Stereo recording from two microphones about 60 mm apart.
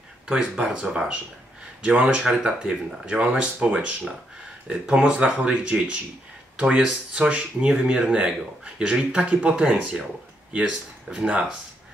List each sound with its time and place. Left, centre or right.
0.3 s speech: centre
11.1 s speech: right